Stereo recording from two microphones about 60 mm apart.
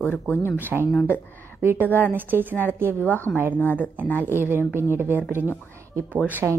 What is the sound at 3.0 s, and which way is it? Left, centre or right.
Speech, left.